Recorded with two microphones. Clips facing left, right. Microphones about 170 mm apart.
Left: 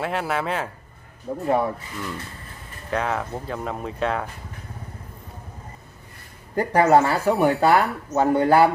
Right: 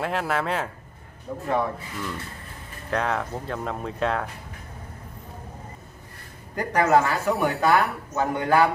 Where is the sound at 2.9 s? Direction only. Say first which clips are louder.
Left 1 dB; centre (ahead or behind).